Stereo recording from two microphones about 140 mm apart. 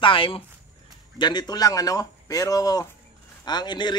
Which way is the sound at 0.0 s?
40° left (ahead or behind).